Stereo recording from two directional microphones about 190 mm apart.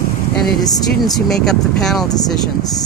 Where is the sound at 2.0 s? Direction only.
20° left (ahead or behind).